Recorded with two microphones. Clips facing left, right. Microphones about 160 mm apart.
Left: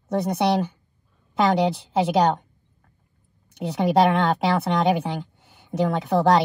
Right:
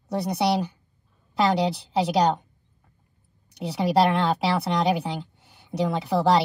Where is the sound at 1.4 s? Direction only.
Centre (ahead or behind).